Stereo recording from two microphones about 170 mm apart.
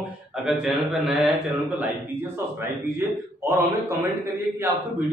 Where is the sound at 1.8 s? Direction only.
10° right (ahead or behind).